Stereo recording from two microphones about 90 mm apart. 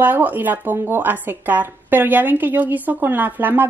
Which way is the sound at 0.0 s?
20° right (ahead or behind).